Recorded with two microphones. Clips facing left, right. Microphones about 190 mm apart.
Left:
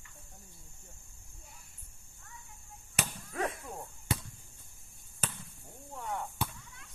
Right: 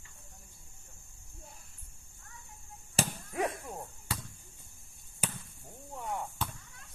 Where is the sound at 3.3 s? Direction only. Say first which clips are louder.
Right 2 dB; 15° right (ahead or behind).